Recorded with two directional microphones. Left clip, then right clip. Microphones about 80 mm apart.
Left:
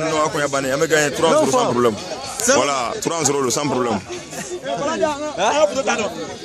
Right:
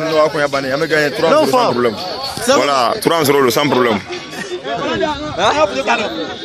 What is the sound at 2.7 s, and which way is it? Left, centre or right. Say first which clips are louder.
Speech: right 8 dB; right.